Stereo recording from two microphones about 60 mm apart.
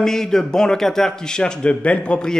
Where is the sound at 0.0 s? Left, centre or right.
Centre.